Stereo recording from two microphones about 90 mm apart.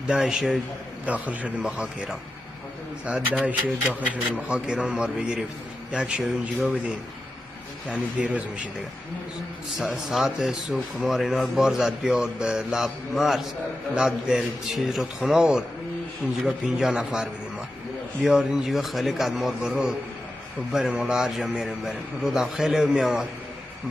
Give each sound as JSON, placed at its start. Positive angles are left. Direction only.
{"t": 0.0, "sound": "a man's voice", "side_deg": -10}
{"t": 7.9, "sound": "a man's voice", "side_deg": -15}
{"t": 9.8, "sound": "a man's voice", "side_deg": 0}